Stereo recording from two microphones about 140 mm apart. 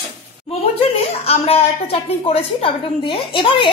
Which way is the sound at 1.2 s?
45° left (ahead or behind).